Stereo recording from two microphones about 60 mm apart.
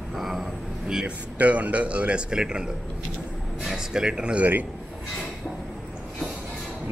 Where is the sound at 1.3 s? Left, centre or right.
Right.